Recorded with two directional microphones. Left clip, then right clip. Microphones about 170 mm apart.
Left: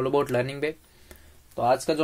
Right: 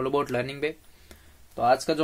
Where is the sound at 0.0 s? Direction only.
15° left (ahead or behind).